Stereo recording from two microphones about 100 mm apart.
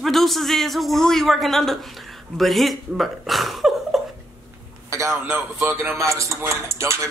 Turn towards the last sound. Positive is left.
turn(degrees=-30)  # may be behind; listen again after turning